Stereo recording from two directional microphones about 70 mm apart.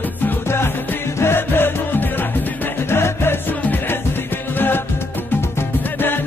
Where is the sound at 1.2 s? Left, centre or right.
Left.